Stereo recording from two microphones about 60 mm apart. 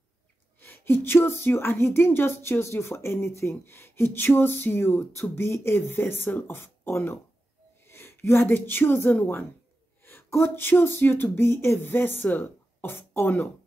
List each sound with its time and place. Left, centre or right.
0.6 s a woman's voice: left